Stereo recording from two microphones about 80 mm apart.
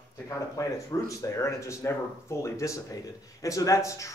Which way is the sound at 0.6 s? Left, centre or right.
Left.